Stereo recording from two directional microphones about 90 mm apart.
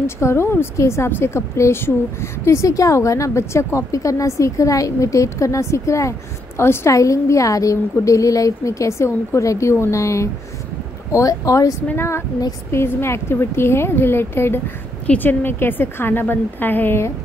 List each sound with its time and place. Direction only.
0.0 s a woman's voice: 30° left (ahead or behind)